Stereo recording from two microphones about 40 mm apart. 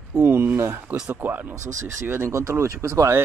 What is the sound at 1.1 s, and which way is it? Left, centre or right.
Speech, right.